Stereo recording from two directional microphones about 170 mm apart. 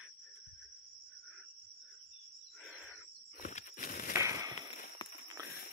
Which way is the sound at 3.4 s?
50° left (ahead or behind).